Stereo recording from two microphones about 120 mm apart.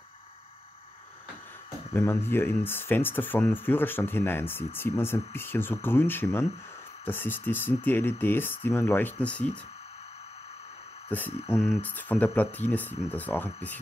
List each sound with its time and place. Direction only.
2.0 s speech: 20° left (ahead or behind)
11.1 s speech: 15° left (ahead or behind)